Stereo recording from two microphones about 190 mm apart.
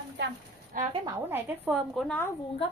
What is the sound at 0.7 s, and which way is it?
Speech, 45° right (ahead or behind).